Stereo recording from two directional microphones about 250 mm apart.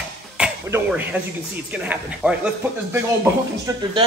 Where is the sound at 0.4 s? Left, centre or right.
Centre.